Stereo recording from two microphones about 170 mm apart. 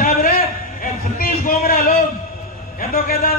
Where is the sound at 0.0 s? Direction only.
55° left (ahead or behind).